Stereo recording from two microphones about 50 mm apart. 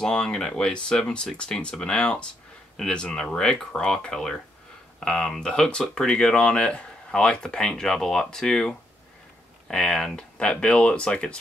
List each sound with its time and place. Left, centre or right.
0.0 s speech: centre